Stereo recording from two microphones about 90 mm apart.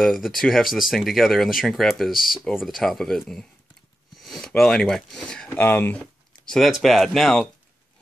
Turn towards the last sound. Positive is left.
turn(degrees=5)  # may be behind; listen again after turning